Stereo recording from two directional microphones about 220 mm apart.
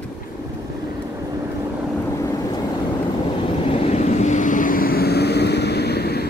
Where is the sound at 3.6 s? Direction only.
25° left (ahead or behind).